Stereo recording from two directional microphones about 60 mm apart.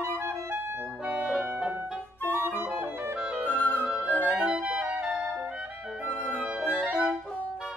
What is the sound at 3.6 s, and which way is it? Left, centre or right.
Flute, left.